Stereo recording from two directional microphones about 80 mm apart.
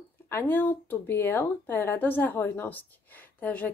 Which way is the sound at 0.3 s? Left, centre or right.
Left.